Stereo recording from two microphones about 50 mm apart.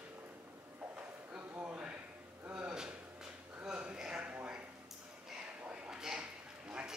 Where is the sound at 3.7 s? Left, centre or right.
Centre.